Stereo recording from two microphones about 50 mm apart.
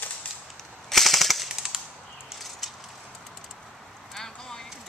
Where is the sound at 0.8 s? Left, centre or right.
Centre.